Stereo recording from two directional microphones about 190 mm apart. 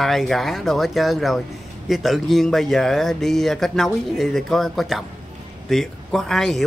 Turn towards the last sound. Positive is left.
turn(degrees=0)  # may be behind; listen again after turning